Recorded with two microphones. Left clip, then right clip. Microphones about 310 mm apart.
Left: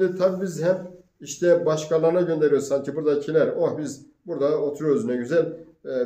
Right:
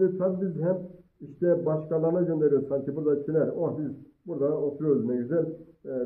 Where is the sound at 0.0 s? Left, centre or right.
Centre.